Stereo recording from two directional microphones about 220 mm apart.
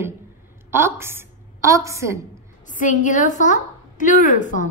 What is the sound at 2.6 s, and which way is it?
A woman's voice, 35° left (ahead or behind).